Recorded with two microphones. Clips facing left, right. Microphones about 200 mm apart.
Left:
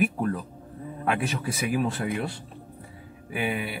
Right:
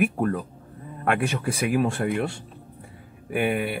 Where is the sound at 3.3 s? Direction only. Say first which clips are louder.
Right 5 dB; 50° right (ahead or behind).